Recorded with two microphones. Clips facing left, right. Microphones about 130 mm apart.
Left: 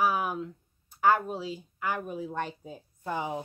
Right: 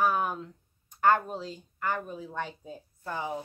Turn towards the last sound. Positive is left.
turn(degrees=20)  # may be behind; listen again after turning